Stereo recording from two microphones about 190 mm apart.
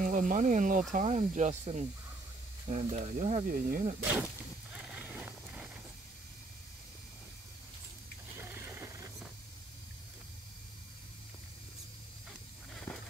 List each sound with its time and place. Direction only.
0.0 s speech: 45° right (ahead or behind)
4.7 s vehicle: 5° right (ahead or behind)
8.4 s a sound: 10° right (ahead or behind)
12.9 s walk: 15° left (ahead or behind)